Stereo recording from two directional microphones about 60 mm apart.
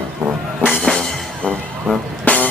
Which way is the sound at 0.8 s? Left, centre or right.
Centre.